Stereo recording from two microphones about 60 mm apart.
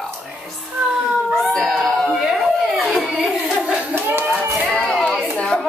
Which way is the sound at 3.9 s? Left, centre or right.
Right.